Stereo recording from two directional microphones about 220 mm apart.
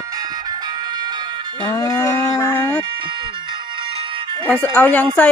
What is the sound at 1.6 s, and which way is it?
Cattle, 10° left (ahead or behind).